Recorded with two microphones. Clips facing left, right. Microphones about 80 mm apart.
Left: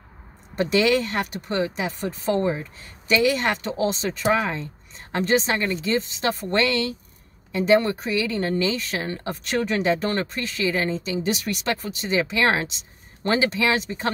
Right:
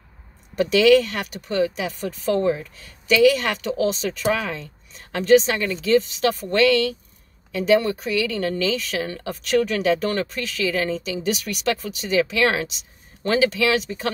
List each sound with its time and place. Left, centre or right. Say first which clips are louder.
0.6 s speech: right 5 dB; left